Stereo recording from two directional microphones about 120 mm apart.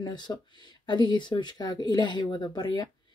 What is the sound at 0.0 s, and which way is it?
A woman's voice, 40° left (ahead or behind).